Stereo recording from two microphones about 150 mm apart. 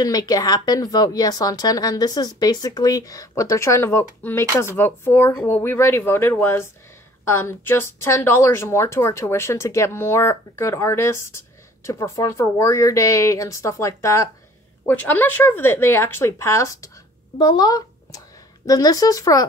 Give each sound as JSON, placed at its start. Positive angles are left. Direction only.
{"t": 0.0, "sound": "a woman's voice", "side_deg": 25}